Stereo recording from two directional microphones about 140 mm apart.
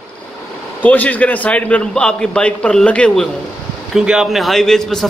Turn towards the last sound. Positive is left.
turn(degrees=5)  # may be behind; listen again after turning